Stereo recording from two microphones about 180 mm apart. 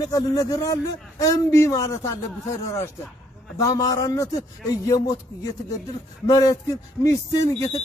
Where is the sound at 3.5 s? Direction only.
20° left (ahead or behind).